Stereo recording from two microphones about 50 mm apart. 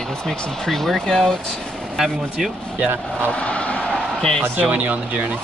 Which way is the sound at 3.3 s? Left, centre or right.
Left.